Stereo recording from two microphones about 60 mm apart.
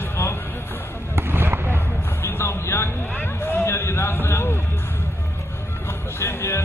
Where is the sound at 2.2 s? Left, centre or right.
Left.